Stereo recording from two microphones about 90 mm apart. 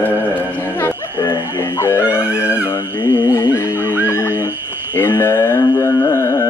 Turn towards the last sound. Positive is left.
turn(degrees=35)  # may be behind; listen again after turning